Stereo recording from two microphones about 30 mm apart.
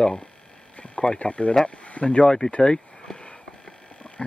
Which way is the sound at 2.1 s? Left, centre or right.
Left.